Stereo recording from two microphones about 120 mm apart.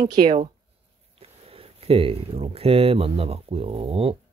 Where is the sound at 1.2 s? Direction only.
55° right (ahead or behind).